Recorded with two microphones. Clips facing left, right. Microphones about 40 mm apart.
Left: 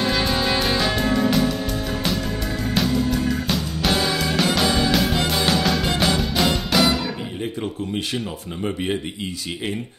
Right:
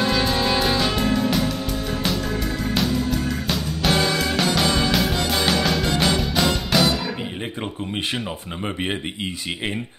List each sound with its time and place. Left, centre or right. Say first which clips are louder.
0.0 s music: right 1 dB; centre
2.6 s music: left 3 dB; centre
7.6 s speech: left 1 dB; right